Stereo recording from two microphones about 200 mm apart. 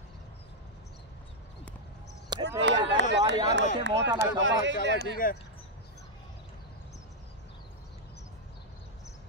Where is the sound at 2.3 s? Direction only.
20° right (ahead or behind).